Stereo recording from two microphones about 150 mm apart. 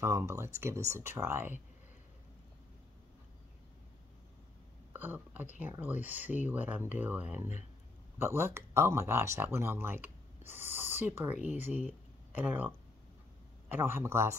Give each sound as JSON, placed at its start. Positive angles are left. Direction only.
{"t": 0.0, "sound": "speech", "side_deg": -20}
{"t": 4.9, "sound": "speech", "side_deg": -10}